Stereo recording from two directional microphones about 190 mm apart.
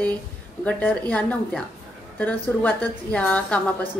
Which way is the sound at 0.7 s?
10° left (ahead or behind).